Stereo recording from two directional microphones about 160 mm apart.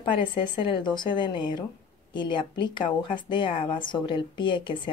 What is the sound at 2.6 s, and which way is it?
A woman's voice, 30° left (ahead or behind).